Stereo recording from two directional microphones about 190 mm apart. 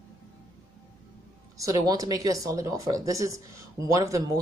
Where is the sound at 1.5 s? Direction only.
20° right (ahead or behind).